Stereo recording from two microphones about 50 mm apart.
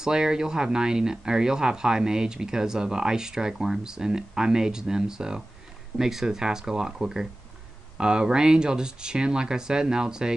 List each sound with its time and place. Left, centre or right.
0.0 s speech: centre